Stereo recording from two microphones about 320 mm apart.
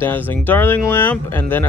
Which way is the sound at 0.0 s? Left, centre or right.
Centre.